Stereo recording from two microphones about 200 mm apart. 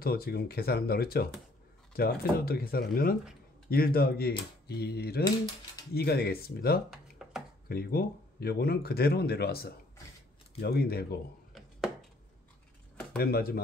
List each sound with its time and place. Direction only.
0.0 s speech: 50° left (ahead or behind)
7.2 s a sound: 5° right (ahead or behind)
7.6 s speech: 50° left (ahead or behind)
13.2 s speech: 50° left (ahead or behind)